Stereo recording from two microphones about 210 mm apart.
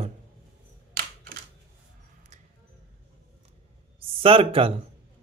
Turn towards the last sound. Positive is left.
turn(degrees=-25)  # may be behind; listen again after turning